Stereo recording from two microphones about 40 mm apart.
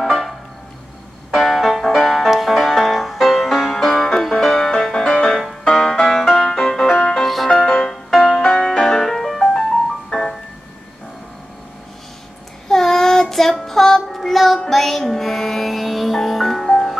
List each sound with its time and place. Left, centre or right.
0.0 s music: centre
3.7 s music: centre
9.5 s music: centre
12.6 s child singing: centre
14.7 s music: centre